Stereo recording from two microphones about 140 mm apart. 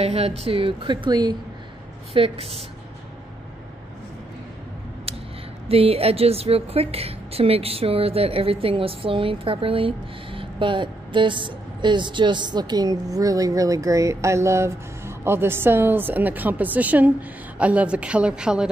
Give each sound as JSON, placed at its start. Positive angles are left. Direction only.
{"t": 0.0, "sound": "a woman's voice", "side_deg": -45}
{"t": 2.1, "sound": "speech", "side_deg": -45}
{"t": 5.7, "sound": "a woman's voice", "side_deg": -45}